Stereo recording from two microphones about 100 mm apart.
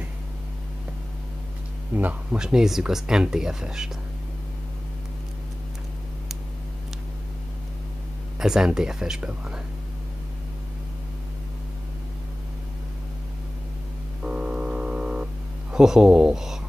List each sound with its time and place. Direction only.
2.0 s speech: 15° right (ahead or behind)
2.4 s speech: 5° right (ahead or behind)
8.4 s speech: 5° right (ahead or behind)
14.2 s telephone dialing: 10° right (ahead or behind)
15.7 s speech: 5° right (ahead or behind)